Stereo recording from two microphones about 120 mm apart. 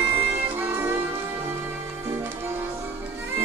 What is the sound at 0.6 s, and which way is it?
Music, 20° right (ahead or behind).